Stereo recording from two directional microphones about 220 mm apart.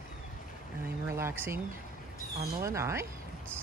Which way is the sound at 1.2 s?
10° right (ahead or behind).